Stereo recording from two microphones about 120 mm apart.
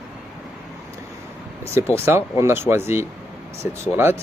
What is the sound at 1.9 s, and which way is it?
Speech, 20° right (ahead or behind).